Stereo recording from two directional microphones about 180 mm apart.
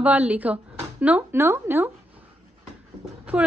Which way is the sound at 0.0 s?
10° right (ahead or behind).